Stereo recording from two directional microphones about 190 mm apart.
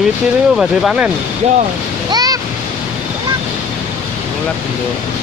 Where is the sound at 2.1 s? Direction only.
20° right (ahead or behind).